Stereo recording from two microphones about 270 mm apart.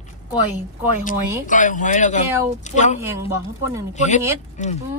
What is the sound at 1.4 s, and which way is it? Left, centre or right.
Speech, left.